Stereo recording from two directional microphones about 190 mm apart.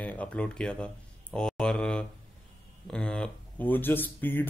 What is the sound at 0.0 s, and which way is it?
Speech, 10° left (ahead or behind).